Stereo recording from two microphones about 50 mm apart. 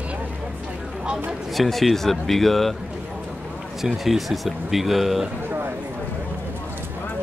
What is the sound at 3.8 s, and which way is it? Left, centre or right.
Speech, centre.